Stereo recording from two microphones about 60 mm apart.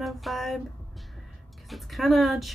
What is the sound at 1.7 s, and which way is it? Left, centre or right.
Speech, centre.